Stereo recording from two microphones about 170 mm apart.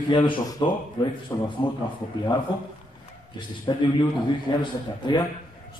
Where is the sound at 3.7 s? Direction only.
25° left (ahead or behind).